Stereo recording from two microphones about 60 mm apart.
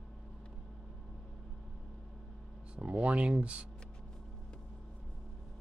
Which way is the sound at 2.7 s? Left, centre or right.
Centre.